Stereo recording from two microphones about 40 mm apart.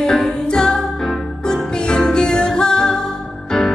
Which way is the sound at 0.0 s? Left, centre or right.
Centre.